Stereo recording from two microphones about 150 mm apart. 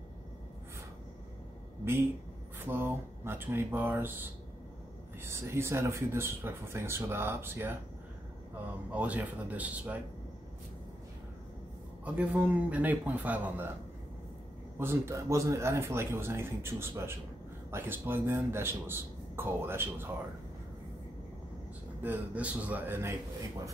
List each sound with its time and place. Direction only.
2.6 s speech: 15° right (ahead or behind)
8.9 s speech: 10° right (ahead or behind)
12.0 s speech: 10° right (ahead or behind)
14.8 s speech: 15° right (ahead or behind)
22.0 s speech: 10° right (ahead or behind)